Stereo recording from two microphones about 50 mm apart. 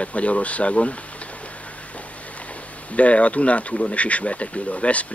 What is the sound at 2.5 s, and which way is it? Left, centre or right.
Speech, left.